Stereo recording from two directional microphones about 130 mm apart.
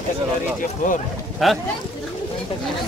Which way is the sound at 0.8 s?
75° left (ahead or behind).